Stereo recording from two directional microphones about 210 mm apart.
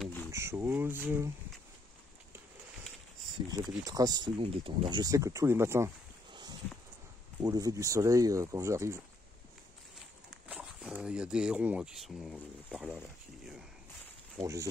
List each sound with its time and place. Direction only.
0.0 s a sound: 10° left (ahead or behind)
0.3 s speech: 15° right (ahead or behind)
3.8 s speech: 15° right (ahead or behind)
7.4 s speech: 15° right (ahead or behind)
10.5 s speech: 5° right (ahead or behind)
14.3 s speech: 15° right (ahead or behind)